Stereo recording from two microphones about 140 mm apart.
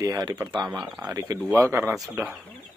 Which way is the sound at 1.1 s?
25° right (ahead or behind).